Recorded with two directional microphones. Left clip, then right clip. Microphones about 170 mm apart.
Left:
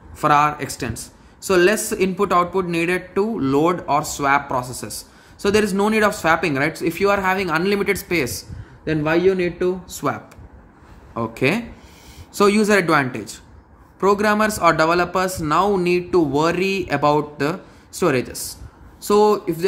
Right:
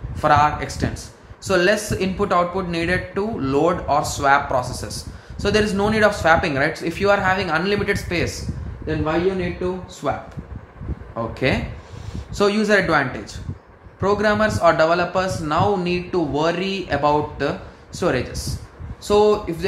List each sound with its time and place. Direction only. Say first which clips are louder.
0.1 s speech: even; 40° left (ahead or behind)
10.0 s speech: even; 55° left (ahead or behind)
11.1 s a man's voice: left 1 dB; 40° left (ahead or behind)